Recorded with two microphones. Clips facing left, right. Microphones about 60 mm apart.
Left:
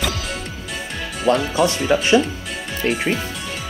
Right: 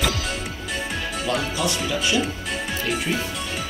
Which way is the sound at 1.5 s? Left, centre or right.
Left.